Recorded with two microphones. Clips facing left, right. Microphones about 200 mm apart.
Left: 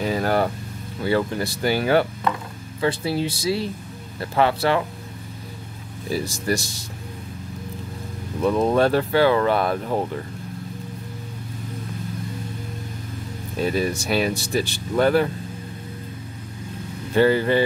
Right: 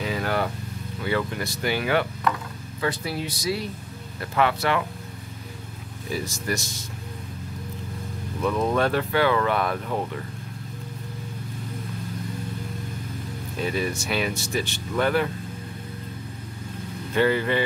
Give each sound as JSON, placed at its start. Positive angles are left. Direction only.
{"t": 0.0, "sound": "vehicle", "side_deg": 40}
{"t": 1.0, "sound": "speech", "side_deg": 35}
{"t": 6.0, "sound": "speech", "side_deg": 35}
{"t": 8.4, "sound": "speech", "side_deg": 30}
{"t": 13.7, "sound": "speech", "side_deg": 35}
{"t": 17.1, "sound": "speech", "side_deg": 35}